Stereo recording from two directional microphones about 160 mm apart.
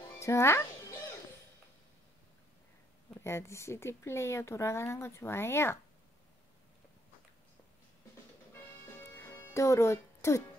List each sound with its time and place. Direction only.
0.2 s a child's voice: 15° left (ahead or behind)
3.2 s speech: 15° left (ahead or behind)
9.1 s music: 15° left (ahead or behind)